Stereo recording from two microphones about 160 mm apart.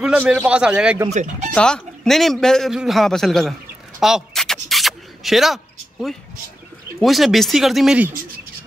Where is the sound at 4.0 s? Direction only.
Centre (ahead or behind).